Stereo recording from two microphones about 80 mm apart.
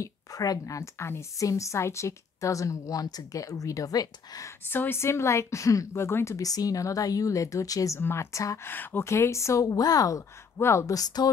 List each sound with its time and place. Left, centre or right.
0.0 s a woman's voice: left
4.6 s a woman's voice: left
8.0 s speech: left
8.6 s speech: left
10.6 s speech: left
11.0 s a woman's voice: left